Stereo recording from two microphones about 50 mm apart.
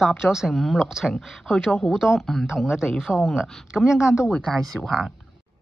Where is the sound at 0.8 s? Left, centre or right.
Centre.